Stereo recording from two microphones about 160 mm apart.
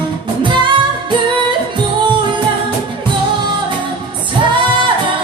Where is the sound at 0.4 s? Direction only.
30° right (ahead or behind).